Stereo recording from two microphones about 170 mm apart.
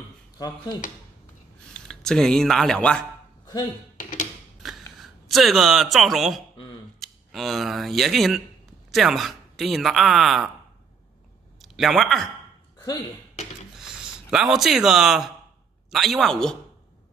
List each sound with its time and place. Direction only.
1.7 s speech: 5° left (ahead or behind)
3.9 s a sound: 55° left (ahead or behind)
5.0 s speech: centre (ahead or behind)
11.6 s speech: centre (ahead or behind)
14.3 s speech: centre (ahead or behind)